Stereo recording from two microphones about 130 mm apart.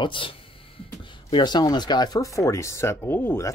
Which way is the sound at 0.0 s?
40° left (ahead or behind).